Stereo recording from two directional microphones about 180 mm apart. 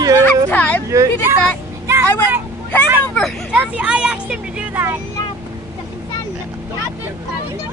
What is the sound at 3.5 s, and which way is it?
Speech, 5° right (ahead or behind).